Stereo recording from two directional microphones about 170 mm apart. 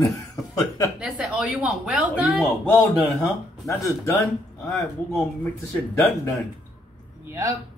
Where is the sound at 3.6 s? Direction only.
15° left (ahead or behind).